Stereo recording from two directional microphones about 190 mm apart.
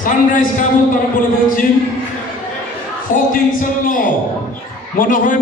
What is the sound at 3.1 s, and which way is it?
A man's voice, 45° left (ahead or behind).